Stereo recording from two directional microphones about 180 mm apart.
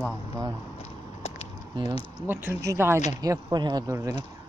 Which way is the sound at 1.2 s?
35° left (ahead or behind).